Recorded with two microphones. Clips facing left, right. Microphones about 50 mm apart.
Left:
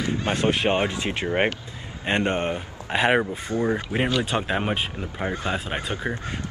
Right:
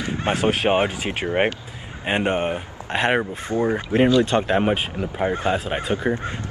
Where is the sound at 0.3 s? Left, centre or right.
Centre.